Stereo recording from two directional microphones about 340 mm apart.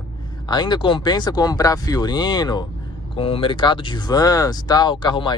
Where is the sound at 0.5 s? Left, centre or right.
Centre.